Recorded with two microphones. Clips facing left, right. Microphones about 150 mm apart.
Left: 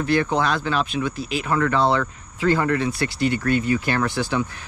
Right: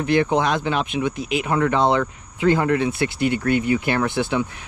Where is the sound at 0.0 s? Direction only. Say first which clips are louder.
Right 2 dB; 20° right (ahead or behind).